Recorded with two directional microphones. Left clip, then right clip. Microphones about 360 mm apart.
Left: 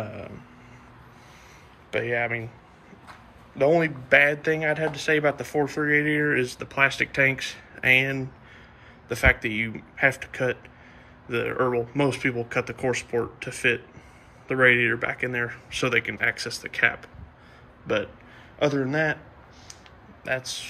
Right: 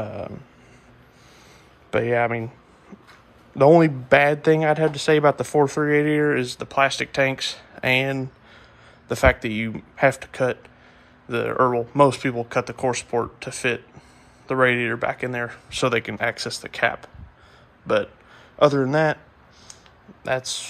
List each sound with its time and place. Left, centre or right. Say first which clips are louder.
1.9 s a man's voice: right 5 dB; centre
2.2 s speech: right 4 dB; right
3.5 s speech: right 6 dB; centre